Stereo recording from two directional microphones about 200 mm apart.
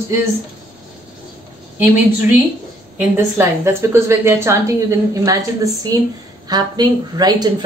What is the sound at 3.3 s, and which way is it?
A woman's voice, 15° right (ahead or behind).